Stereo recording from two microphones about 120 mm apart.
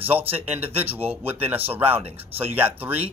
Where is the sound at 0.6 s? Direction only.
55° right (ahead or behind).